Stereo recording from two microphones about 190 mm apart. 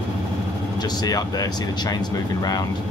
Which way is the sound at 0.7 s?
20° left (ahead or behind).